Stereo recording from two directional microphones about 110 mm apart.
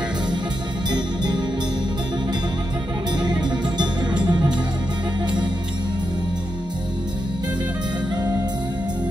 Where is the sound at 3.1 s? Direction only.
40° right (ahead or behind).